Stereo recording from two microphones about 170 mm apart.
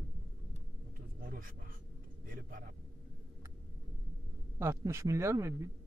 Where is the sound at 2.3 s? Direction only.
55° right (ahead or behind).